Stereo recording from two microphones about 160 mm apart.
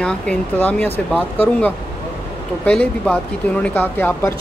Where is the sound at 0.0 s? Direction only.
10° left (ahead or behind).